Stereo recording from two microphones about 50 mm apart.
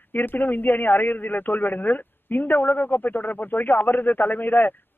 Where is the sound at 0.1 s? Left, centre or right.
Left.